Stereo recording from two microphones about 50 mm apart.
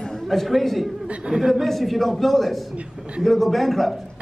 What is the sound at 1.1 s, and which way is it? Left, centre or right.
Speech, right.